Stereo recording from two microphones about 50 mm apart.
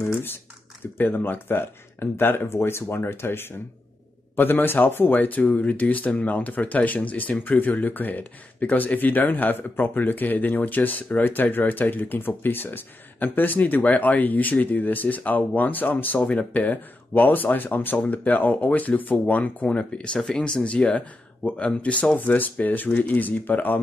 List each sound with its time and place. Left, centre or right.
0.9 s speech: left
16.2 s speech: left
22.1 s speech: left